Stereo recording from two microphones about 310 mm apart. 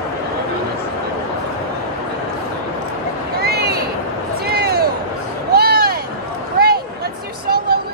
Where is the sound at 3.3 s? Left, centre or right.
Right.